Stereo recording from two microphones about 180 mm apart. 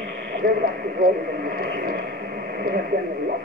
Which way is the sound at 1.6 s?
55° right (ahead or behind).